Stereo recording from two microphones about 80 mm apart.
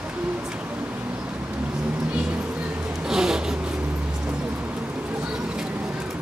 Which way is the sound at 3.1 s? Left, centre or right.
Centre.